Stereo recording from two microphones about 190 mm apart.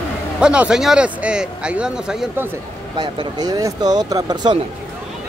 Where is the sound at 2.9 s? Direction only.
25° right (ahead or behind).